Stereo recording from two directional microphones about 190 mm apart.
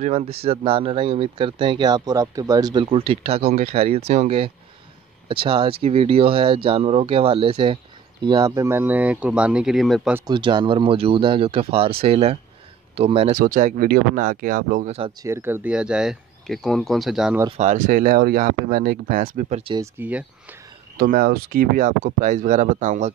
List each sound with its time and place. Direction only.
0.0 s speech: 30° right (ahead or behind); by 10.1 s centre (ahead or behind)
10.1 s speech: 25° right (ahead or behind)
13.4 s speech: 45° right (ahead or behind)
14.9 s speech: 30° right (ahead or behind)
15.2 s speech: 10° right (ahead or behind)
17.5 s speech: 40° right (ahead or behind)
19.6 s speech: 25° right (ahead or behind)
20.0 s speech: 5° right (ahead or behind)
21.0 s speech: 50° right (ahead or behind)